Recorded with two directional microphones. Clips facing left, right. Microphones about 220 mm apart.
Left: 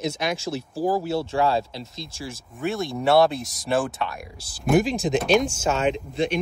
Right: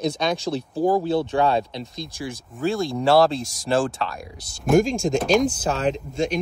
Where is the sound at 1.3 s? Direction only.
25° right (ahead or behind).